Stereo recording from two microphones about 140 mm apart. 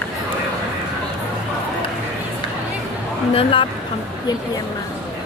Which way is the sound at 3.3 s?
40° left (ahead or behind).